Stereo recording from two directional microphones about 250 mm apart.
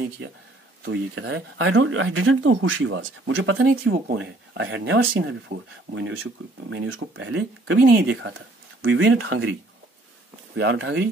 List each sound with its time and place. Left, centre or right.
0.8 s speech: right